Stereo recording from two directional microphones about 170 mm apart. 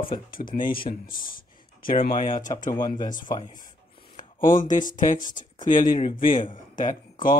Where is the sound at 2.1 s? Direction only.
50° left (ahead or behind).